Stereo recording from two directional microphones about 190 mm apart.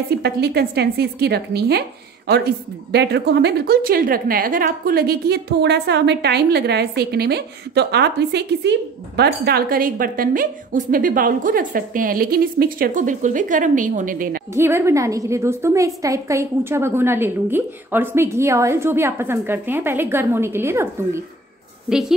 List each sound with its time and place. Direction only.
0.2 s a woman's voice: 55° right (ahead or behind)
14.5 s a woman's voice: 15° right (ahead or behind)